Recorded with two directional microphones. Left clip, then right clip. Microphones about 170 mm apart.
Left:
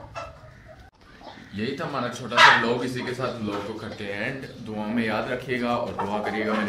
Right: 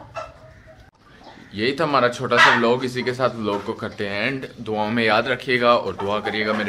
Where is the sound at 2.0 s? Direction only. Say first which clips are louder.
Left 1 dB; 55° right (ahead or behind).